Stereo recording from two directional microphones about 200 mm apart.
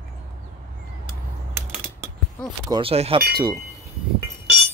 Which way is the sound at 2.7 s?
30° right (ahead or behind).